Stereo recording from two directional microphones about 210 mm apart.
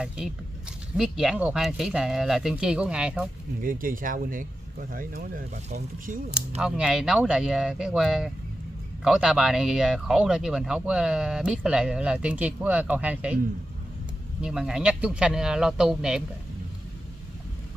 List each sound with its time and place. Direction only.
0.9 s speech: 5° right (ahead or behind)
3.6 s speech: 40° right (ahead or behind)
6.6 s speech: 5° right (ahead or behind)
14.4 s speech: 5° right (ahead or behind)